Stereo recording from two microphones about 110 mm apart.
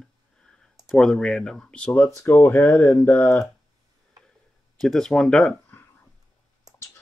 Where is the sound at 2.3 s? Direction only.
20° left (ahead or behind).